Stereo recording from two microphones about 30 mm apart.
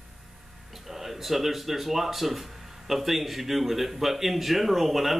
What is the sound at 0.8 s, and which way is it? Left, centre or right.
Speech, centre.